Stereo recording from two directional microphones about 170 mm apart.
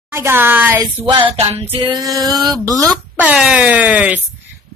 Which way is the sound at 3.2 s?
5° right (ahead or behind).